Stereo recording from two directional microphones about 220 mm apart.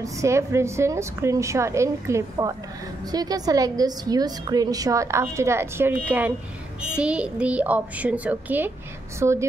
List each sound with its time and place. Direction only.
0.0 s a woman's voice: 15° right (ahead or behind)